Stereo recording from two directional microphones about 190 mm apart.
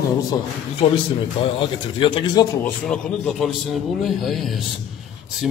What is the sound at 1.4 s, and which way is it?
Speech, 30° left (ahead or behind).